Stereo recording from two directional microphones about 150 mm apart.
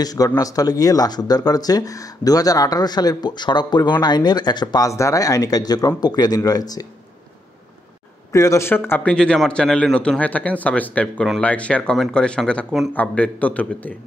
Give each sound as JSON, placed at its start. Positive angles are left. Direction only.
{"t": 0.0, "sound": "speech", "side_deg": 25}
{"t": 8.3, "sound": "speech", "side_deg": 20}